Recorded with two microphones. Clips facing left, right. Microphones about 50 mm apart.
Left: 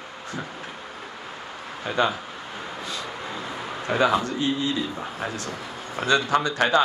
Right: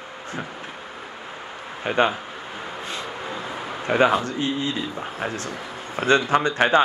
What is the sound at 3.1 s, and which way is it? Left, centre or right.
Vehicle, centre.